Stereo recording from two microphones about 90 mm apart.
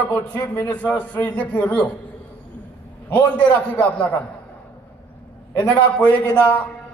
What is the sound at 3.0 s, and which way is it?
Speech, 20° left (ahead or behind).